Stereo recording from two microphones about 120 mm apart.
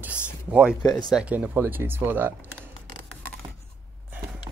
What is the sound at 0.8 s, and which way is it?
Speech, 35° left (ahead or behind).